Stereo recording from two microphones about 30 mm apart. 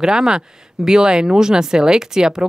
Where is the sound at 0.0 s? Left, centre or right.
Right.